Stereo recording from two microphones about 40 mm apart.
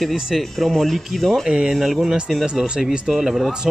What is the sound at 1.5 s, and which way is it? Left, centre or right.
Speech, centre.